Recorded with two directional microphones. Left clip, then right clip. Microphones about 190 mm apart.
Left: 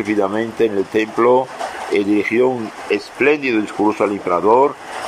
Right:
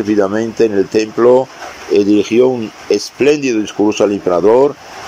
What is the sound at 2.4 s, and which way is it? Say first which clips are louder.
Speech: right 5 dB; 20° right (ahead or behind).